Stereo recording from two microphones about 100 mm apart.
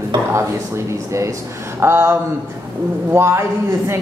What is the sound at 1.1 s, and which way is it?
Music, 30° right (ahead or behind).